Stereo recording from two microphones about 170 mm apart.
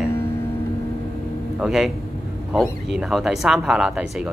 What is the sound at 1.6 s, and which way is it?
Speech, 5° right (ahead or behind).